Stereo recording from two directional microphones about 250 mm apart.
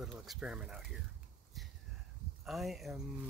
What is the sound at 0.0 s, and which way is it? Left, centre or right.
Speech, centre.